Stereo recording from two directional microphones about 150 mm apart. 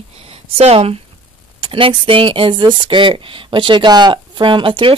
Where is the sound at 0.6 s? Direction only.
40° right (ahead or behind).